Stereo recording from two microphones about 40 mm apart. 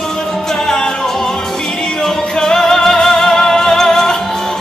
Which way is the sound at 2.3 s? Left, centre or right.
Centre.